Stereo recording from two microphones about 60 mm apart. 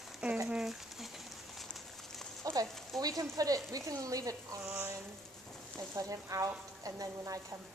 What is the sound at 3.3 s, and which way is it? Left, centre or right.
Speech, right.